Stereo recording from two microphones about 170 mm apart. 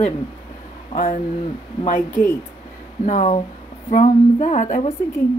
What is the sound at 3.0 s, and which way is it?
Speech, 45° left (ahead or behind).